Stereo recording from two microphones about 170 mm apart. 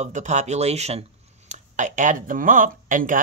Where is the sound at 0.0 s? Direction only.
45° right (ahead or behind).